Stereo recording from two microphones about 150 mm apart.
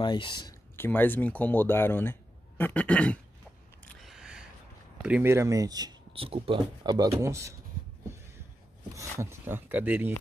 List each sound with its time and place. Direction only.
0.0 s speech: 30° left (ahead or behind)
0.7 s speech: 15° left (ahead or behind)
3.8 s single-lens reflex camera: 5° left (ahead or behind)
4.1 s a sound: 5° right (ahead or behind)
5.0 s speech: 5° right (ahead or behind)
5.3 s speech: 20° right (ahead or behind)
6.1 s speech: 40° right (ahead or behind); by 7.5 s 20° right (ahead or behind)
8.9 s speech: 20° right (ahead or behind)